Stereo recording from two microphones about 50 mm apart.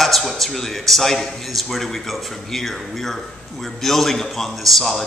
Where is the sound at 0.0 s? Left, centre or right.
Centre.